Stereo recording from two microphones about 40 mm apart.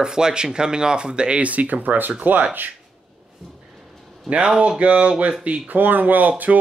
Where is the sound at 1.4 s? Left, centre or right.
Right.